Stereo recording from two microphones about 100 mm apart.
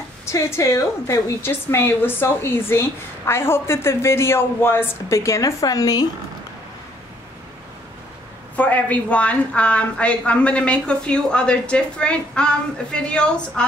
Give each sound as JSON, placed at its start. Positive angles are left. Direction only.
{"t": 0.2, "sound": "a woman's voice", "side_deg": 30}
{"t": 8.5, "sound": "a woman's voice", "side_deg": 15}